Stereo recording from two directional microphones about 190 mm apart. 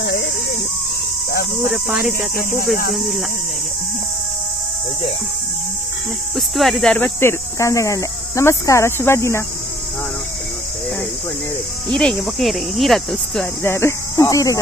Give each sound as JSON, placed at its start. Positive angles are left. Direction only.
{"t": 0.0, "sound": "a sound", "side_deg": 60}
{"t": 1.7, "sound": "speech", "side_deg": -5}
{"t": 2.3, "sound": "speech", "side_deg": 50}
{"t": 2.9, "sound": "speech", "side_deg": 0}
{"t": 6.3, "sound": "speech", "side_deg": 0}
{"t": 11.9, "sound": "speech", "side_deg": 5}
{"t": 13.6, "sound": "speech", "side_deg": 15}